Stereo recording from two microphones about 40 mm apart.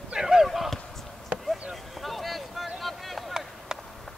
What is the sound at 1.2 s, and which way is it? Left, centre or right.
Basketball bounce, centre.